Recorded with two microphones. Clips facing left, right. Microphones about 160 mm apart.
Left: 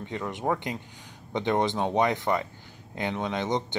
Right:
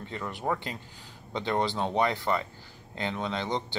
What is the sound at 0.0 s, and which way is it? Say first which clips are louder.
Speech: left 3 dB; 20° left (ahead or behind).